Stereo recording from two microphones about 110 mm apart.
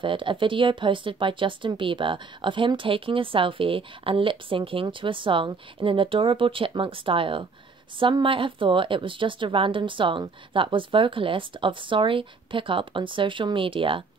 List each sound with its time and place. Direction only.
0.0 s speech: 50° right (ahead or behind)